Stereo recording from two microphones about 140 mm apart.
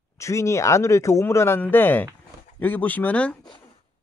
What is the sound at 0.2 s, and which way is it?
Speech, 20° left (ahead or behind).